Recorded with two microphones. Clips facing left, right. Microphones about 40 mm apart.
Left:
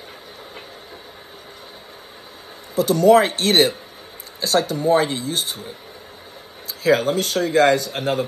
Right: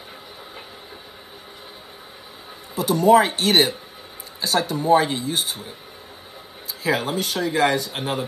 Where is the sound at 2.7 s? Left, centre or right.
Right.